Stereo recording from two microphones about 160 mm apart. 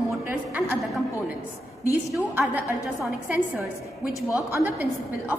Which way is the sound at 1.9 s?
5° right (ahead or behind).